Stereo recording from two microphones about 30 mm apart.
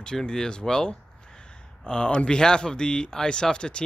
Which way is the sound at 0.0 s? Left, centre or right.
Left.